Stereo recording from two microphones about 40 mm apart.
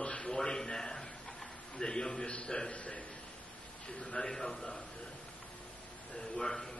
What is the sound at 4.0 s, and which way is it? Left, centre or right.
Speech, centre.